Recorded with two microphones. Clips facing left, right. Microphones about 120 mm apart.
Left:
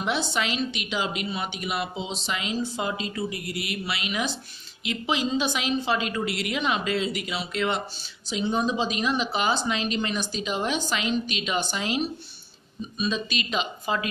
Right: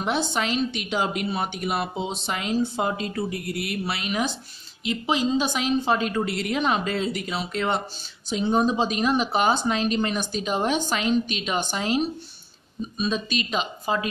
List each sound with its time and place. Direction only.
0.0 s a woman's voice: 45° right (ahead or behind)